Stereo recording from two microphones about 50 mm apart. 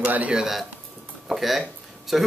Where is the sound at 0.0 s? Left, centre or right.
Right.